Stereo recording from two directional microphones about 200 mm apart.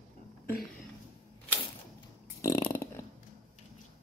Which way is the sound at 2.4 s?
15° left (ahead or behind).